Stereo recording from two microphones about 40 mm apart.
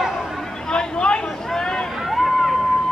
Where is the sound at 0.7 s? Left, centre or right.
Left.